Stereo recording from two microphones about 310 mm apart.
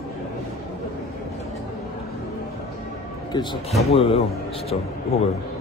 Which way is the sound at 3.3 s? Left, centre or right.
Centre.